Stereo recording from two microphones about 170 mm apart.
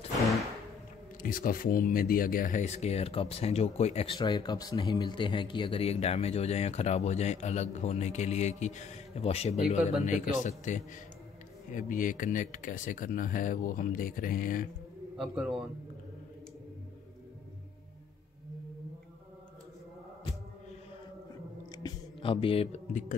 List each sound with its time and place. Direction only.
1.2 s speech: 55° left (ahead or behind)
15.1 s a man's voice: 5° right (ahead or behind)
21.7 s a sound: 25° left (ahead or behind); by 23.1 s 45° left (ahead or behind)